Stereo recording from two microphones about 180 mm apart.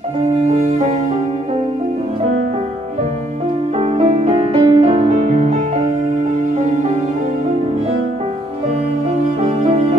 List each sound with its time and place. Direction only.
3.8 s music: 40° right (ahead or behind)
9.7 s music: 35° right (ahead or behind)